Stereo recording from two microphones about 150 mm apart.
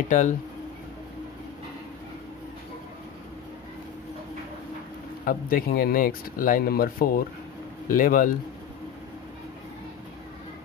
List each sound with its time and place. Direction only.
0.1 s speech: 55° left (ahead or behind)
5.2 s speech: 70° left (ahead or behind)